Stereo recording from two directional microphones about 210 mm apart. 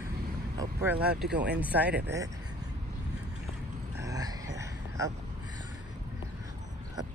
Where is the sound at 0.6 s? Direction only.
15° right (ahead or behind).